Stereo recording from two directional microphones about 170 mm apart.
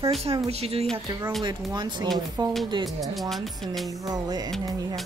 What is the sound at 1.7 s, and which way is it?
Speech, 25° right (ahead or behind).